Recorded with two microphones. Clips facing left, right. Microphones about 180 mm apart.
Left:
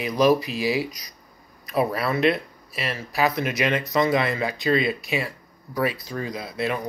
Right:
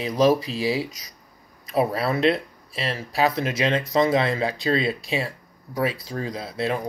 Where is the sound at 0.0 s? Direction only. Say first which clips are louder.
Even; 30° right (ahead or behind).